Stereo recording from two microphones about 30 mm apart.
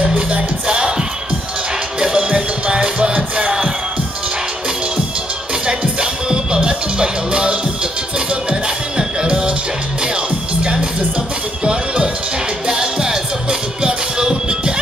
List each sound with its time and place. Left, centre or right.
0.3 s music: right
5.7 s music: right